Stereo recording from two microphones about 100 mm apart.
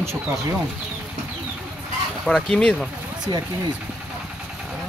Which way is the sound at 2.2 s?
5° left (ahead or behind).